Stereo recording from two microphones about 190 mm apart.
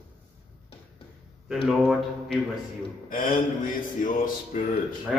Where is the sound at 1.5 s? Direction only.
Centre (ahead or behind).